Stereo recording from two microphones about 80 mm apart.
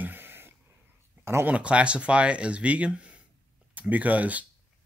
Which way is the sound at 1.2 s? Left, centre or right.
Right.